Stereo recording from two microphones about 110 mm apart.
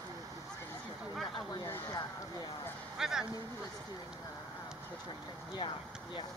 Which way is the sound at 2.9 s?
5° right (ahead or behind).